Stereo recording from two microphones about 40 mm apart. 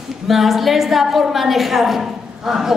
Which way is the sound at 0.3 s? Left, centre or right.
Centre.